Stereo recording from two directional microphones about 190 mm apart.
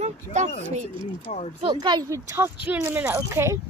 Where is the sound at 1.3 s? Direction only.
35° left (ahead or behind).